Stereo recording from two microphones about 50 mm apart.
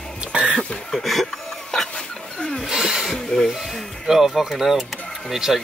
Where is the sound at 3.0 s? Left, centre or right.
Centre.